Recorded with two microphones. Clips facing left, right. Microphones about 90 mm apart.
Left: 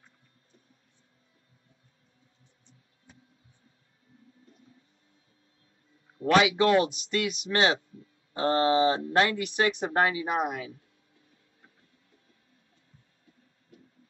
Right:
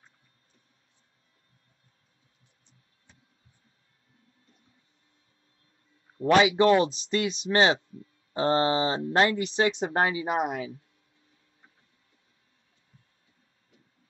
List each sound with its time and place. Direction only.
6.1 s speech: 30° right (ahead or behind)